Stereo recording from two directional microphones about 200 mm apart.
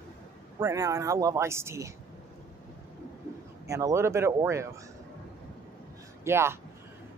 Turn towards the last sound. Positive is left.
turn(degrees=-15)  # may be behind; listen again after turning